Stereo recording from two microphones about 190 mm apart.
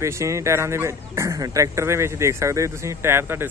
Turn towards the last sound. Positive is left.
turn(degrees=-10)  # may be behind; listen again after turning